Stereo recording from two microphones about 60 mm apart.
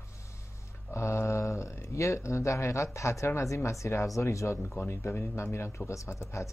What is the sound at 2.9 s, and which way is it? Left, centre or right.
Speech, left.